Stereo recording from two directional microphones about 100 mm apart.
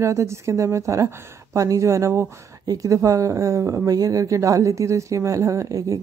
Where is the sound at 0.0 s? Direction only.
30° right (ahead or behind).